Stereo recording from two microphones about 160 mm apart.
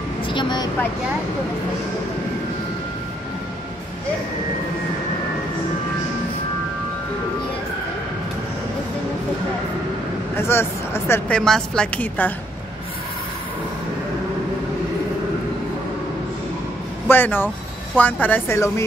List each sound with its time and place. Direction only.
0.3 s vehicle: 30° left (ahead or behind)
10.3 s speech: 15° left (ahead or behind)
17.1 s speech: 10° left (ahead or behind)